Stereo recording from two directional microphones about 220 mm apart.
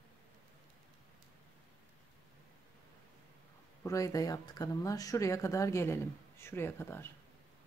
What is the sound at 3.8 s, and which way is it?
Speech, 15° left (ahead or behind).